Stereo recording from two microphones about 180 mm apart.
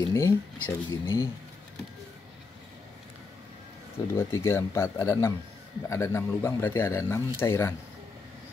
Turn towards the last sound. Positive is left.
turn(degrees=15)  # may be behind; listen again after turning